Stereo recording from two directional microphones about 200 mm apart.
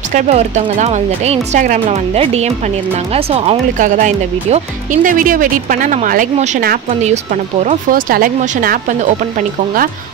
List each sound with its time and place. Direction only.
0.1 s speech: 35° right (ahead or behind)